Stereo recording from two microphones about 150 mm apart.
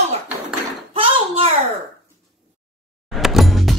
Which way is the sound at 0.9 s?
40° right (ahead or behind).